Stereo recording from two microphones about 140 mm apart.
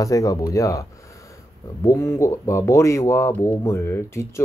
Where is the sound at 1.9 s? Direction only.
20° left (ahead or behind).